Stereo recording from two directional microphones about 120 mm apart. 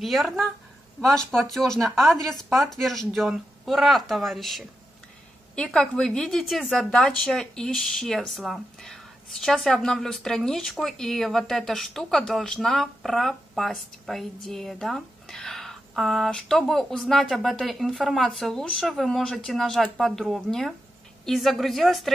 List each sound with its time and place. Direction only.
0.0 s a woman's voice: centre (ahead or behind)